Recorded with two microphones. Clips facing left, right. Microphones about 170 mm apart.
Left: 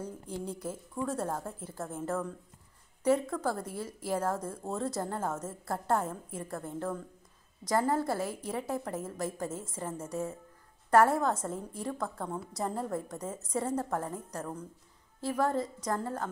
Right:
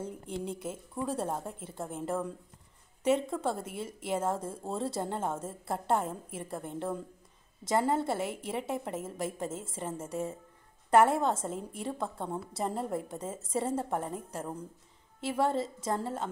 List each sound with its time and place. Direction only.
0.5 s a woman's voice: 25° right (ahead or behind)